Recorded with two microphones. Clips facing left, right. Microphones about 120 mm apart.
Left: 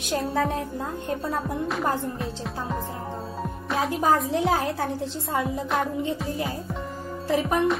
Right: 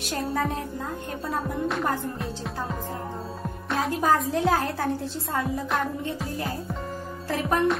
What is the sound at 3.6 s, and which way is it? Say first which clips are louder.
Music: even; centre (ahead or behind).